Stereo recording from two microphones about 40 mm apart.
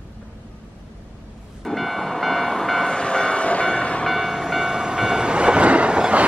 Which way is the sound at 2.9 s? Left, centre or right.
Left.